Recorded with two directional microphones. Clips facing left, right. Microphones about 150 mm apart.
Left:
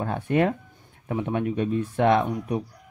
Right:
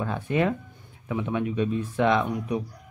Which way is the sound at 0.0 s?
50° left (ahead or behind).